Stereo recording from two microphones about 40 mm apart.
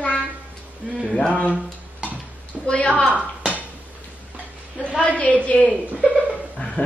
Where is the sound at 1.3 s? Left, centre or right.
Left.